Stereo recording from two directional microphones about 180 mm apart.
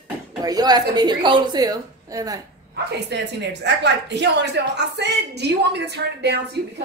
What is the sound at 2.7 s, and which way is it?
Speech, 70° right (ahead or behind).